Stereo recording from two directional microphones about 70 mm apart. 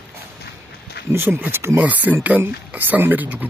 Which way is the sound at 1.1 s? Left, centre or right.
Right.